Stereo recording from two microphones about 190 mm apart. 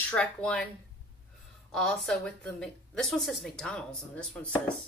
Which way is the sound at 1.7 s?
5° left (ahead or behind).